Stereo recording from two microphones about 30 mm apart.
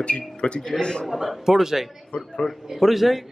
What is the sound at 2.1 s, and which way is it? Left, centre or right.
Speech, left.